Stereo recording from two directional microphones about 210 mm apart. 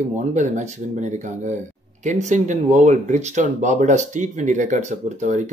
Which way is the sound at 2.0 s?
35° right (ahead or behind).